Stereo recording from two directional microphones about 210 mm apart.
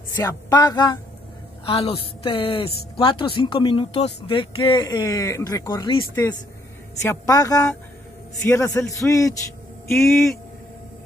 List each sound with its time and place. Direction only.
0.2 s a man's voice: 15° left (ahead or behind)
9.8 s speech: centre (ahead or behind)